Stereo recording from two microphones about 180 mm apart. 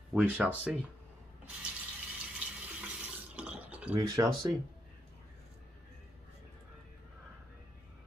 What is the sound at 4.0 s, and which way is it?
Speech, 20° right (ahead or behind).